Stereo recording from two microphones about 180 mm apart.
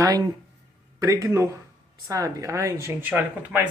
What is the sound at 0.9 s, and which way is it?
Speech, 20° right (ahead or behind).